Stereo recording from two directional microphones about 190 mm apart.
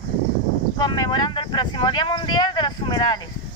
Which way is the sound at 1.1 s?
25° left (ahead or behind).